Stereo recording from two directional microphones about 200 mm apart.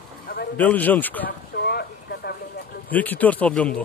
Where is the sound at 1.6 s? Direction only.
50° left (ahead or behind).